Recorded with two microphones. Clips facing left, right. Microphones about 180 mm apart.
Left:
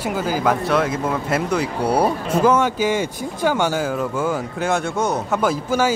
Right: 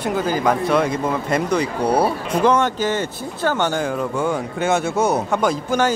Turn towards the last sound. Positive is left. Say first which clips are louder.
# even
turn(degrees=5)  # may be behind; listen again after turning